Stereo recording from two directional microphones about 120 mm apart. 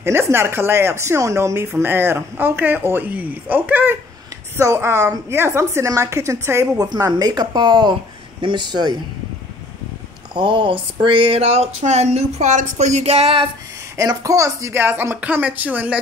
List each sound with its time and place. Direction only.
0.0 s speech: 20° right (ahead or behind)
6.9 s speech: 35° right (ahead or behind)
10.3 s speech: 45° right (ahead or behind)
13.9 s speech: 30° right (ahead or behind)